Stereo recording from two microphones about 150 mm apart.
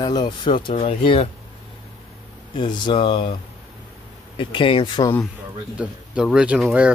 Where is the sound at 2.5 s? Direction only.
30° left (ahead or behind).